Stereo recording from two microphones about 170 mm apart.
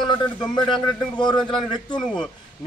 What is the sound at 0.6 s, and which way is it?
A man's voice, 25° left (ahead or behind).